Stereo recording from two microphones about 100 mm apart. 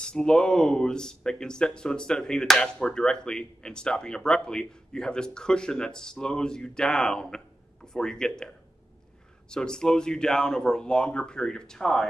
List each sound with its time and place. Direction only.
0.0 s speech: 10° left (ahead or behind)